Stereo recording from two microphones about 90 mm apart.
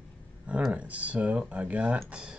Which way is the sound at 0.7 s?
15° right (ahead or behind).